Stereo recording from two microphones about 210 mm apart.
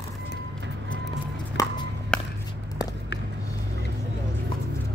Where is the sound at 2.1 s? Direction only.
5° left (ahead or behind).